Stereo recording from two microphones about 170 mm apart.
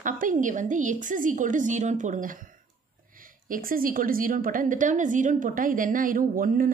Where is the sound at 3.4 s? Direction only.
55° right (ahead or behind).